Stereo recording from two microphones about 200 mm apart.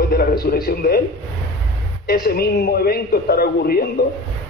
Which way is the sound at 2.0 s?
50° left (ahead or behind).